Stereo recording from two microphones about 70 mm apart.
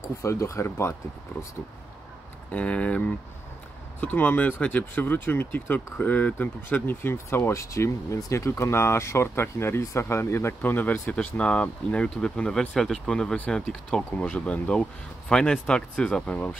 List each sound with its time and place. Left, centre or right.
0.2 s speech: left
2.5 s speech: centre; by 8.5 s left
8.5 s speech: left
10.6 s speech: left